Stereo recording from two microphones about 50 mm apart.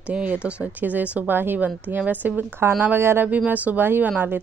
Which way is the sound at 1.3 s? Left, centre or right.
Right.